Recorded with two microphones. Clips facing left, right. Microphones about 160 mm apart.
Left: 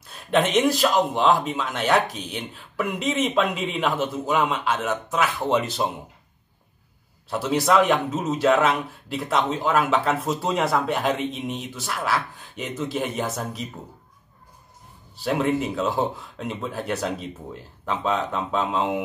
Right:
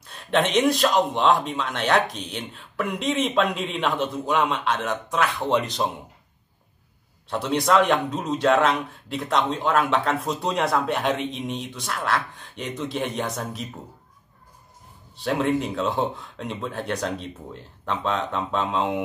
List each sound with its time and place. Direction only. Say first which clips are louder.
0.0 s a man's voice: left 1 dB; centre (ahead or behind)
7.2 s a man's voice: left 1 dB; 5° left (ahead or behind)
15.1 s a man's voice: even; centre (ahead or behind)